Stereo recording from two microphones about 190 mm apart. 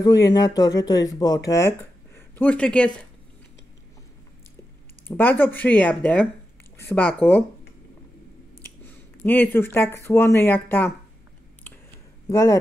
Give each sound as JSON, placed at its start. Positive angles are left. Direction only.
{"t": 0.0, "sound": "speech", "side_deg": 20}
{"t": 5.0, "sound": "speech", "side_deg": 10}
{"t": 9.2, "sound": "speech", "side_deg": 10}
{"t": 12.3, "sound": "speech", "side_deg": 15}